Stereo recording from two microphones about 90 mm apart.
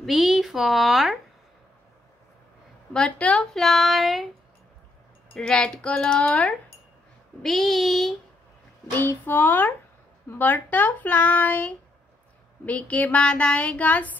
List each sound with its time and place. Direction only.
0.0 s a woman's voice: 5° right (ahead or behind)
2.9 s speech: 10° left (ahead or behind)
3.6 s a woman's voice: centre (ahead or behind)
5.3 s speech: 10° left (ahead or behind)
7.4 s a woman's voice: centre (ahead or behind)
8.9 s speech: 25° left (ahead or behind)